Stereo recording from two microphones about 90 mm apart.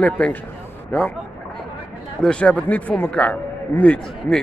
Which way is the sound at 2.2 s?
10° left (ahead or behind).